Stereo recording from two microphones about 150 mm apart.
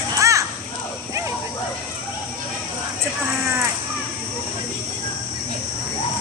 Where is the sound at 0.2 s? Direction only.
20° right (ahead or behind).